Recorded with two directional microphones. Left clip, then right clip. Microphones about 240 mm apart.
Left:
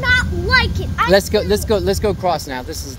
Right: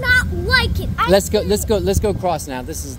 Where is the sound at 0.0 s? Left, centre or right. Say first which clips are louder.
Even; right.